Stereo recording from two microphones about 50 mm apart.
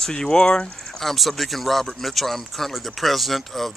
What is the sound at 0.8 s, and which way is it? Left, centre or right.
Speech, centre.